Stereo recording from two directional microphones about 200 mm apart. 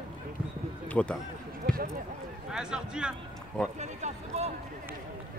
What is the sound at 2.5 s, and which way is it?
Speech, 5° right (ahead or behind).